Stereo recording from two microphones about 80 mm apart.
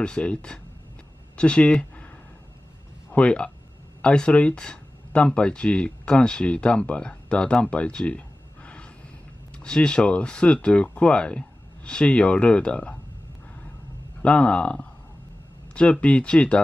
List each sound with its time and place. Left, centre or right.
0.0 s speech: centre
3.1 s speech: centre
9.6 s speech: centre
14.2 s speech: centre